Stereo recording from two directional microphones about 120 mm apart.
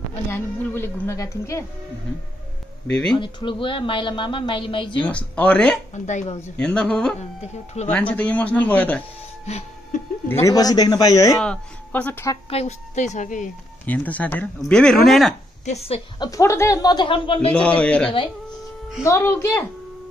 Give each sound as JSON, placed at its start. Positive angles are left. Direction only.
{"t": 0.3, "sound": "speech", "side_deg": 20}
{"t": 2.9, "sound": "speech", "side_deg": 5}
{"t": 3.2, "sound": "a woman's voice", "side_deg": 45}
{"t": 5.0, "sound": "speech", "side_deg": 10}
{"t": 5.9, "sound": "a woman's voice", "side_deg": 80}
{"t": 6.6, "sound": "speech", "side_deg": 10}
{"t": 10.4, "sound": "speech", "side_deg": 30}
{"t": 11.3, "sound": "speech", "side_deg": 5}
{"t": 12.4, "sound": "a woman's voice", "side_deg": 60}
{"t": 13.8, "sound": "speech", "side_deg": 10}
{"t": 15.6, "sound": "a woman's voice", "side_deg": 60}
{"t": 16.2, "sound": "speech", "side_deg": 30}
{"t": 17.5, "sound": "speech", "side_deg": 10}
{"t": 19.0, "sound": "speech", "side_deg": 20}